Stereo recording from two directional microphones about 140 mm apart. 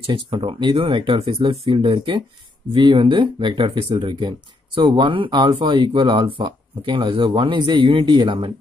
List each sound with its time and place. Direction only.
0.0 s speech: 35° right (ahead or behind)